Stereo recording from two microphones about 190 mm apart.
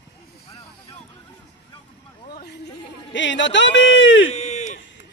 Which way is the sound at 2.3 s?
60° left (ahead or behind).